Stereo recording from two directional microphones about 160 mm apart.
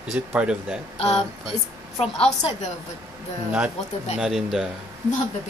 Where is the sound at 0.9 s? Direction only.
40° left (ahead or behind).